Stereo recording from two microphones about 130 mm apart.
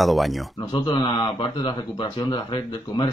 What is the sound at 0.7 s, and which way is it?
A man's voice, 35° left (ahead or behind).